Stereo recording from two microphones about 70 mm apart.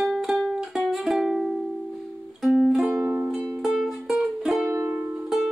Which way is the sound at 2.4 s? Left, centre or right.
Centre.